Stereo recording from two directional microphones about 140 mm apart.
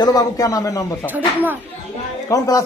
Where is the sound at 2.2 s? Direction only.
25° left (ahead or behind).